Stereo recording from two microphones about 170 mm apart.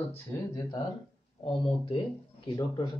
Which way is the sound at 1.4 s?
30° left (ahead or behind).